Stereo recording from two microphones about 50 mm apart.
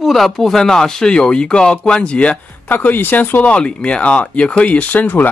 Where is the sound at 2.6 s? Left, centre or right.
Left.